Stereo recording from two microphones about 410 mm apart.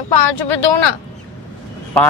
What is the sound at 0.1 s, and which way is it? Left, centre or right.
Speech, left.